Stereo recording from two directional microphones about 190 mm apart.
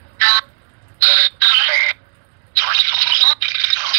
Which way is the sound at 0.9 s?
15° right (ahead or behind).